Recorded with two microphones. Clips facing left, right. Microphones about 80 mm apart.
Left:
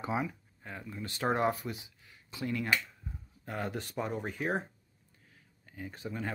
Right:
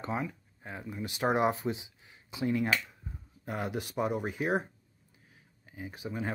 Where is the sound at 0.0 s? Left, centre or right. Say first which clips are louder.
Left 1 dB; centre.